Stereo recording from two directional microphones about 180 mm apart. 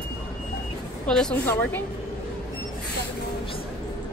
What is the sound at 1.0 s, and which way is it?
Speech, 5° left (ahead or behind).